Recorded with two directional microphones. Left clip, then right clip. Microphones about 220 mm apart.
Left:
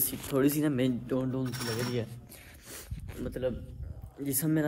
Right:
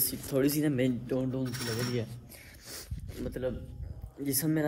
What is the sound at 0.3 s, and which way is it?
Speech, 10° left (ahead or behind).